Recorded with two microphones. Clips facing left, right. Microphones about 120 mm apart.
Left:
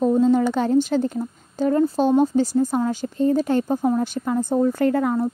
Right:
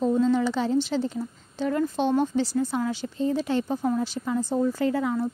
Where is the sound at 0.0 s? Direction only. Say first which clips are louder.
Left 5 dB; 45° left (ahead or behind).